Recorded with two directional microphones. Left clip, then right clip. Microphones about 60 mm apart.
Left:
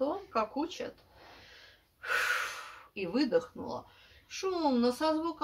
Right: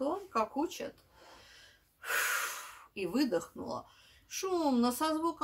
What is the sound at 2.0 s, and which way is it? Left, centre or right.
Gasp, centre.